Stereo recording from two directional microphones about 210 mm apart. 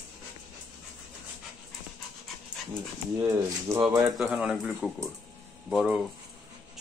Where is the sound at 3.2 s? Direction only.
10° right (ahead or behind).